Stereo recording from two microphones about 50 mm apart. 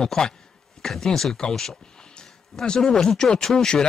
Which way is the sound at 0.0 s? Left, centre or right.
Centre.